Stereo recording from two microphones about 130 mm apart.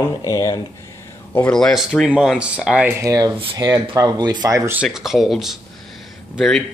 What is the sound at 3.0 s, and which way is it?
Speech, 25° right (ahead or behind).